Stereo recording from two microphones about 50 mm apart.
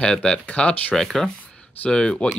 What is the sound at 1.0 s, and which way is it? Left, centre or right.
Speech, centre.